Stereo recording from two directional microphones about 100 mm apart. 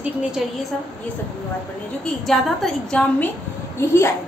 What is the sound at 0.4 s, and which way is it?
Speech, centre (ahead or behind).